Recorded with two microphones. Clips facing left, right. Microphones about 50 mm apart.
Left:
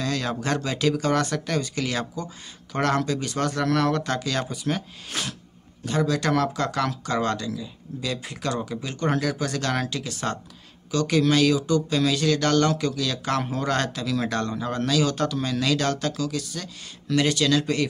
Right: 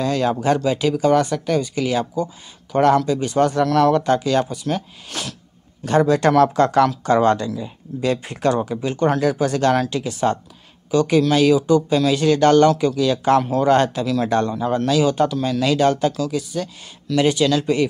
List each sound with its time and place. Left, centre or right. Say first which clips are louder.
0.0 s speech: right 8 dB; right
4.5 s speech: right 4 dB; centre
5.9 s speech: right 8 dB; right; by 17.8 s centre